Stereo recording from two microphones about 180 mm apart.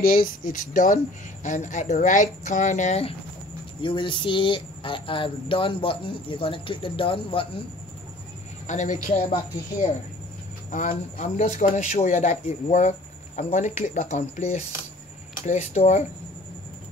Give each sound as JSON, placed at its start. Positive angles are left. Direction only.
{"t": 0.0, "sound": "speech", "side_deg": 55}
{"t": 8.6, "sound": "speech", "side_deg": 45}
{"t": 10.7, "sound": "speech", "side_deg": 45}